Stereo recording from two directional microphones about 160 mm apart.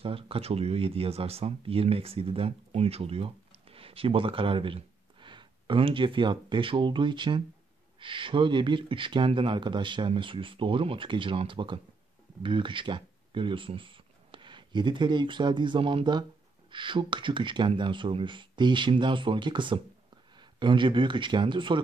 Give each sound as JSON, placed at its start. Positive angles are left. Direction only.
{"t": 0.0, "sound": "speech", "side_deg": -35}